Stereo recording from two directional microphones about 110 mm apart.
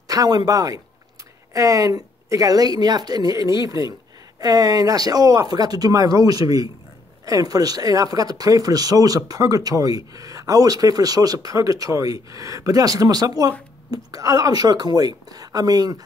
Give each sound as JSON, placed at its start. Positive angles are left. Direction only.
{"t": 0.1, "sound": "speech", "side_deg": -40}